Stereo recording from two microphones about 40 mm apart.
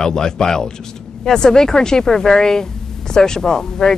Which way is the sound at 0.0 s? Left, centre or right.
Centre.